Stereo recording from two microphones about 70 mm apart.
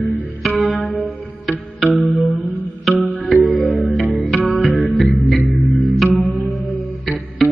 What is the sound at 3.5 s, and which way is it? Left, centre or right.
Music, left.